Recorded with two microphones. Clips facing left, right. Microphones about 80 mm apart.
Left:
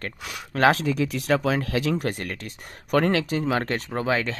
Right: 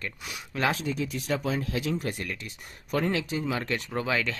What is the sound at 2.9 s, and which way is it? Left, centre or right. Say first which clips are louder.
Speech: left 6 dB; left.